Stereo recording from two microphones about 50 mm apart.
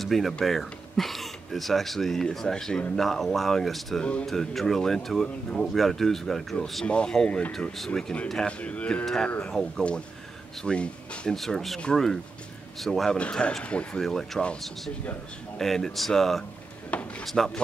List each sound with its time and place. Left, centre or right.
0.0 s speech: centre
4.0 s speech: left
4.3 s speech: centre
6.9 s speech: centre
7.2 s speech: left
7.7 s speech: centre
8.5 s speech: left
9.0 s speech: centre
11.3 s speech: centre
13.2 s speech: centre
14.0 s speech: centre
15.6 s speech: centre